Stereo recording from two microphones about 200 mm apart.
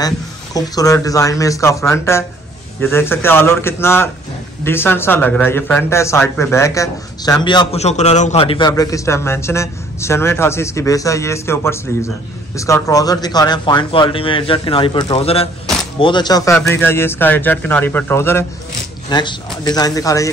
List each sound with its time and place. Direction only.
0.6 s speech: 15° left (ahead or behind)